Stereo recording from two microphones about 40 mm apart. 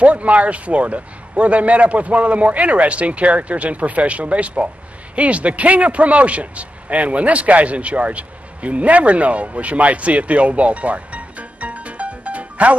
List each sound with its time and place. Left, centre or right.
0.0 s a man's voice: right